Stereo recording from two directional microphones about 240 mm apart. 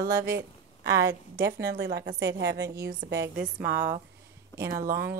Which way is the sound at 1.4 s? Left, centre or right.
Right.